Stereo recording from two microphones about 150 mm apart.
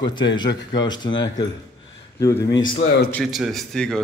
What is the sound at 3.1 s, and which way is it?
Speech, centre (ahead or behind).